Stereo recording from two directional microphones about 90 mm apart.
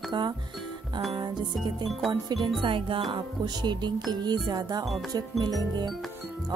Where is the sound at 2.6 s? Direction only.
70° right (ahead or behind).